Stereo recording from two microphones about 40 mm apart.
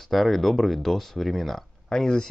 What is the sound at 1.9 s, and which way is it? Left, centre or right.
Speech, centre.